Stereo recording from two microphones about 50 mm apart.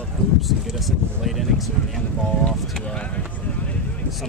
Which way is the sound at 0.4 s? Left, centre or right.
Centre.